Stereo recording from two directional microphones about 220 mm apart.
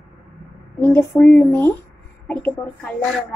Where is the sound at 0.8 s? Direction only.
10° left (ahead or behind).